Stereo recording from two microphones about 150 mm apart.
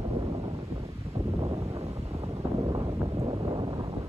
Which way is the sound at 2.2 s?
30° right (ahead or behind).